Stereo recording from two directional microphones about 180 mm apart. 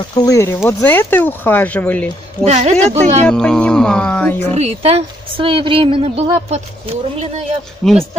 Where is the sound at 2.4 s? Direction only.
40° right (ahead or behind).